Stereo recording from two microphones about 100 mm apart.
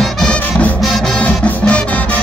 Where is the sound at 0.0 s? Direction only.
5° left (ahead or behind).